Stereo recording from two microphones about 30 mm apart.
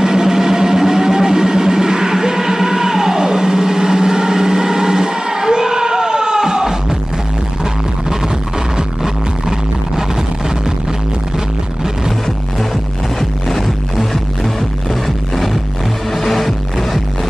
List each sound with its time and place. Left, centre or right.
0.0 s vehicle: centre
13.2 s music: centre
16.1 s music: centre